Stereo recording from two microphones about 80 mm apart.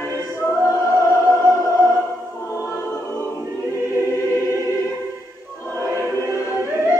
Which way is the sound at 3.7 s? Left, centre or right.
Right.